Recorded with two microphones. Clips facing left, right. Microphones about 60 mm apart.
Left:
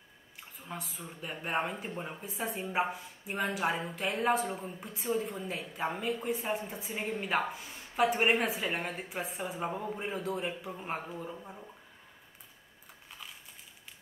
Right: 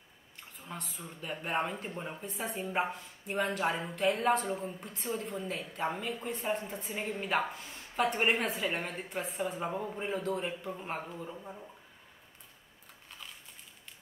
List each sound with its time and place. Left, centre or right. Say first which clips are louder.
0.6 s speech: left 1 dB; centre